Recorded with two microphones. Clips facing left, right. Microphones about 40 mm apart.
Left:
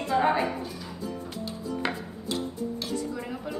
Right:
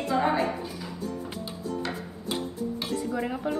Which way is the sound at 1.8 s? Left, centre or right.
Left.